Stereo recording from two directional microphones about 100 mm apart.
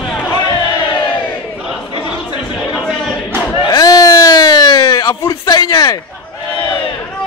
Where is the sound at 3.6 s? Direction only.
40° left (ahead or behind).